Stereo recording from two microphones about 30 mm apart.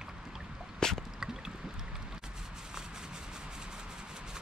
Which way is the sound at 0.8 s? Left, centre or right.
Left.